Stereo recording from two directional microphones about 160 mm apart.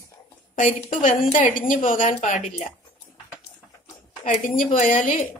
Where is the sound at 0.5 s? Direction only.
55° left (ahead or behind).